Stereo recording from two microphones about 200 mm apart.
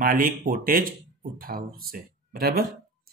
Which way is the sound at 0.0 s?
45° right (ahead or behind).